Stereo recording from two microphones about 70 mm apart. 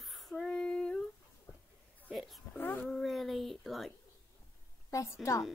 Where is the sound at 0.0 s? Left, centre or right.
Centre.